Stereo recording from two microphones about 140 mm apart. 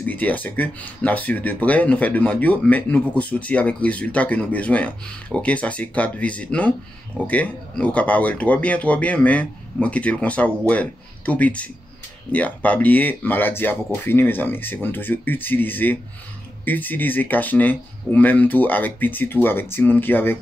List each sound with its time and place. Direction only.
0.0 s speech: 10° left (ahead or behind)